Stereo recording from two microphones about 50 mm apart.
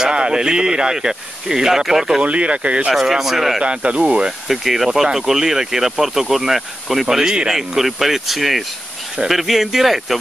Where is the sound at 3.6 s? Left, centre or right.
Right.